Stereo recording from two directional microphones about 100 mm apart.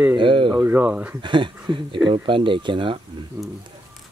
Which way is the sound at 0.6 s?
20° right (ahead or behind).